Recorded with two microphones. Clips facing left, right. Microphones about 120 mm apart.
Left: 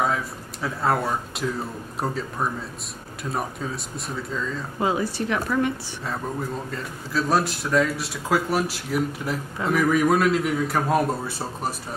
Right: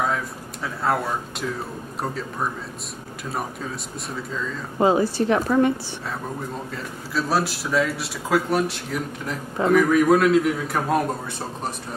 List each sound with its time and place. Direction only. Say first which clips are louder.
0.0 s a man's voice: even; centre (ahead or behind)
4.7 s a woman's voice: right 6 dB; 35° right (ahead or behind)
6.7 s a man's voice: even; centre (ahead or behind)